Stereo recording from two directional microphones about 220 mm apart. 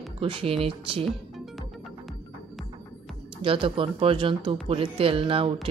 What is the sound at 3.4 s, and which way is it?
Speech, 25° right (ahead or behind).